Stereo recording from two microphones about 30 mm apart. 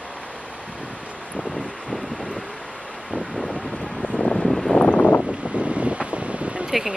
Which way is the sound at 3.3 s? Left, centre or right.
Left.